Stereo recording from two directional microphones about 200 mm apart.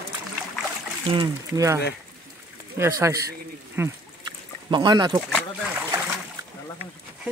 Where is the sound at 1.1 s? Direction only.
20° right (ahead or behind).